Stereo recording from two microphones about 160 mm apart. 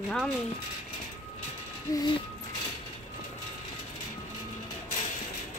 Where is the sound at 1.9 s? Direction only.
20° left (ahead or behind).